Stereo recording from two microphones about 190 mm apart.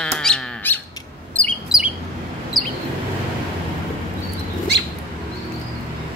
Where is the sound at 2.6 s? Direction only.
20° right (ahead or behind).